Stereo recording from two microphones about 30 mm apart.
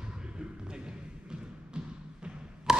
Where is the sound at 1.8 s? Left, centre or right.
Right.